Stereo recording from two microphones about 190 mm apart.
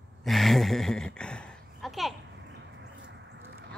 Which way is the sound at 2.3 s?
70° right (ahead or behind).